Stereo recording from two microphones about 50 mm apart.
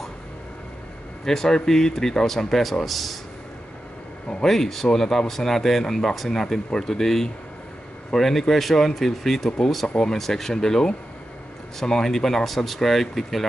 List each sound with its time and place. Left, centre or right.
1.2 s speech: centre
4.3 s speech: centre